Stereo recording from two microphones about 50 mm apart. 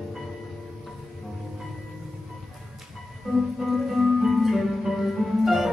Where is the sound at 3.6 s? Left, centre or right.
Centre.